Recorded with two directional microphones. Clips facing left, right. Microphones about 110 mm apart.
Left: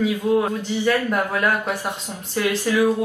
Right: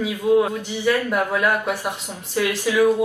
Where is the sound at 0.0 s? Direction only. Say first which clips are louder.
Right 1 dB; 10° right (ahead or behind).